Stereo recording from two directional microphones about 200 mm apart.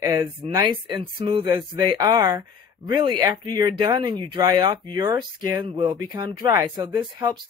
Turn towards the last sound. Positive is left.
turn(degrees=-20)  # may be behind; listen again after turning